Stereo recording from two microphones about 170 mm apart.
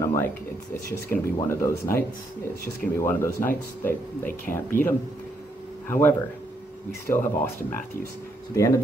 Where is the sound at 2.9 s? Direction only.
15° left (ahead or behind).